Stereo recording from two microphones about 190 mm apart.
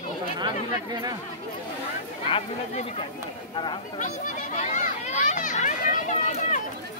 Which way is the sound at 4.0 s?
40° left (ahead or behind).